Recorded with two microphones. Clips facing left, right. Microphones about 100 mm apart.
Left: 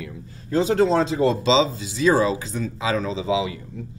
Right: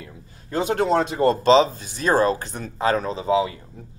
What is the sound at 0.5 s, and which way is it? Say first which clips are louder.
Speech: left 2 dB; 60° right (ahead or behind).